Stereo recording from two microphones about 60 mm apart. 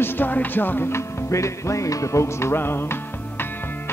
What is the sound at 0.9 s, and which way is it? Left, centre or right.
Music, left.